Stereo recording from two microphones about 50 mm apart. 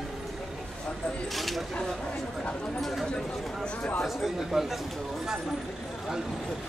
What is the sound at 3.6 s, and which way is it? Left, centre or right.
Chatter, centre.